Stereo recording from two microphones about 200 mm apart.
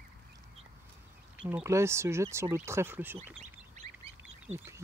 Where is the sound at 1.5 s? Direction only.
15° right (ahead or behind).